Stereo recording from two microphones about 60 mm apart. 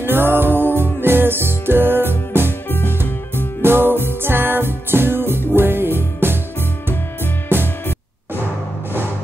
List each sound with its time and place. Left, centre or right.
0.0 s music: right
3.6 s music: right
7.5 s music: right